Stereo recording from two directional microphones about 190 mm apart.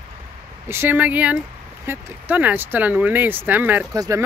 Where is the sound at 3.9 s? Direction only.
20° right (ahead or behind).